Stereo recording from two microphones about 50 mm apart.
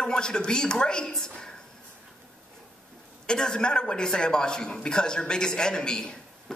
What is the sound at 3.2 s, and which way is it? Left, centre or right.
A man's voice, centre.